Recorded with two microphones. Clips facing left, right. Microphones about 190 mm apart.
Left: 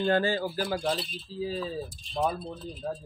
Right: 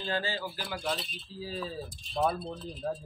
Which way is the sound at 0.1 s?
50° left (ahead or behind).